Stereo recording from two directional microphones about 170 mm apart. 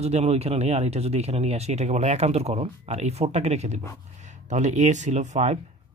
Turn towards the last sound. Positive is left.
turn(degrees=-40)  # may be behind; listen again after turning